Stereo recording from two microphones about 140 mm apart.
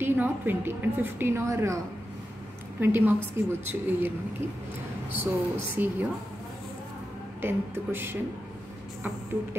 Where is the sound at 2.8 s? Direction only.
15° right (ahead or behind).